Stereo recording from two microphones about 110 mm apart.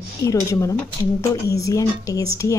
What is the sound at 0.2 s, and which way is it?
Speech, 30° left (ahead or behind).